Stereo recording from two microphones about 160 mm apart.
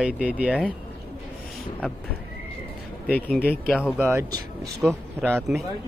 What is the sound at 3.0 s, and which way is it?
Speech, 5° left (ahead or behind).